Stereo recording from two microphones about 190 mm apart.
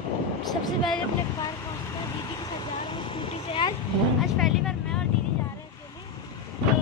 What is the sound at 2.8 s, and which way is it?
Vehicle, 25° left (ahead or behind).